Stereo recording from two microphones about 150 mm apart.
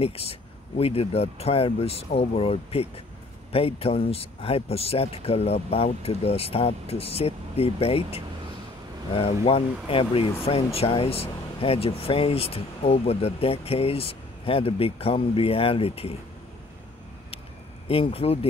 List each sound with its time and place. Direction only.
0.0 s speech: 40° left (ahead or behind)
17.8 s speech: 40° left (ahead or behind)